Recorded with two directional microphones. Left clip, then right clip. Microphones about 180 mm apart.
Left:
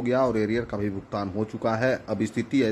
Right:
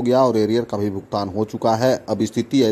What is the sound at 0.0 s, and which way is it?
A man's voice, 25° right (ahead or behind).